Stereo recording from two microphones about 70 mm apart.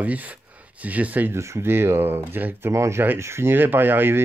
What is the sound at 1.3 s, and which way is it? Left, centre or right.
Speech, right.